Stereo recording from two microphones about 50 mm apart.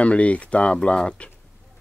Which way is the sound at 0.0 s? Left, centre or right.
Left.